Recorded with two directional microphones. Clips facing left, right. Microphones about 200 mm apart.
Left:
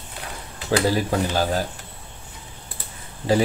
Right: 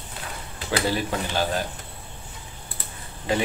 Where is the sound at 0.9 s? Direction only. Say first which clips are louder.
Left 4 dB; 40° left (ahead or behind).